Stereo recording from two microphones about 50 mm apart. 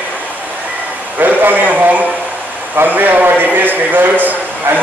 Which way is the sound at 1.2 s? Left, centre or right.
Right.